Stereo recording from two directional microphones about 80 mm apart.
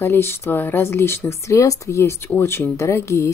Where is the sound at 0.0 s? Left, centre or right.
Left.